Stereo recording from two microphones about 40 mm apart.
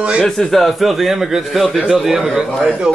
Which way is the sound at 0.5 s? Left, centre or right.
Centre.